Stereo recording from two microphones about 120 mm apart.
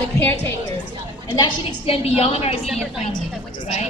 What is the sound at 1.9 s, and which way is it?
Speech, 55° left (ahead or behind).